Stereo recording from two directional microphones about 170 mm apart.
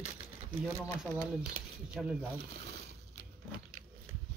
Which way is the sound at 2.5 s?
75° right (ahead or behind).